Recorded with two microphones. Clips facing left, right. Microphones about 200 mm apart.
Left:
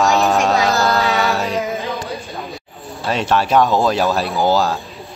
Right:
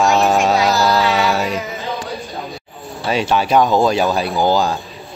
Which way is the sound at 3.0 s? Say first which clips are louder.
Right 1 dB; centre (ahead or behind).